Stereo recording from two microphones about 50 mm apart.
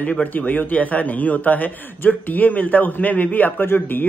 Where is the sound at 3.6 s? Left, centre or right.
Left.